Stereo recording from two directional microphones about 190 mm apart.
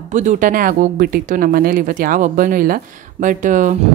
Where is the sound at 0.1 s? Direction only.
40° right (ahead or behind).